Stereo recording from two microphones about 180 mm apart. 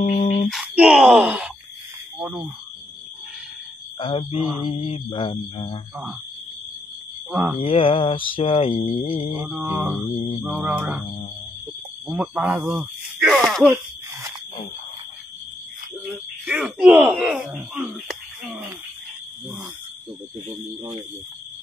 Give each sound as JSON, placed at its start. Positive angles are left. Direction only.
{"t": 0.0, "sound": "music", "side_deg": 35}
{"t": 0.5, "sound": "speech", "side_deg": -5}
{"t": 4.0, "sound": "mantra", "side_deg": 30}
{"t": 7.2, "sound": "speech", "side_deg": -10}
{"t": 7.5, "sound": "mantra", "side_deg": 30}
{"t": 9.3, "sound": "mantra", "side_deg": -10}
{"t": 12.1, "sound": "speech", "side_deg": -10}
{"t": 16.4, "sound": "speech", "side_deg": -5}